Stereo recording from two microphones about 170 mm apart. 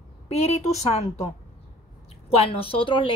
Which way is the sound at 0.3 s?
40° left (ahead or behind).